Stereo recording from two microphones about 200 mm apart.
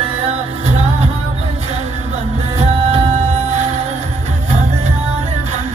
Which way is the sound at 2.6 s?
30° right (ahead or behind).